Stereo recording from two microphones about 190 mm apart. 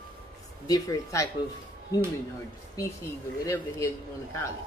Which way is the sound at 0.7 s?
15° left (ahead or behind).